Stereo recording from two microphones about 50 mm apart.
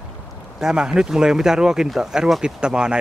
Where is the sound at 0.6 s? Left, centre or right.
Centre.